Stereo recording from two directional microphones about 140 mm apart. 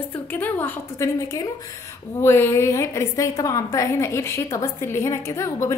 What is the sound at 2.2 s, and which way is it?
A woman's voice, 20° left (ahead or behind).